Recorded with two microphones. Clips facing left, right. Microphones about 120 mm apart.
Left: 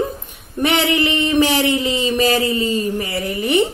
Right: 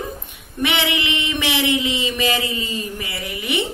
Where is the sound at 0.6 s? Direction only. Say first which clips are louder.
Left 5 dB; 40° left (ahead or behind).